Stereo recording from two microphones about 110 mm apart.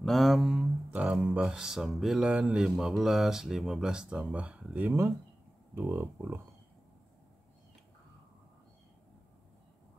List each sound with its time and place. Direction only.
0.0 s speech: centre (ahead or behind); by 6.4 s 20° right (ahead or behind)